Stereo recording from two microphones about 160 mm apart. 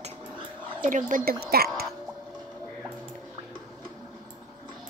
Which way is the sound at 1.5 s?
75° right (ahead or behind).